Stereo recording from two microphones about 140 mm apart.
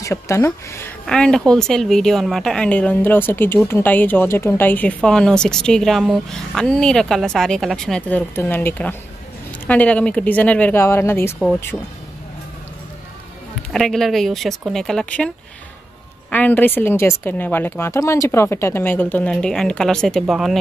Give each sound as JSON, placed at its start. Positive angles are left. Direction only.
{"t": 0.0, "sound": "speech", "side_deg": 20}
{"t": 1.0, "sound": "a woman's voice", "side_deg": 5}
{"t": 13.6, "sound": "a woman's voice", "side_deg": 0}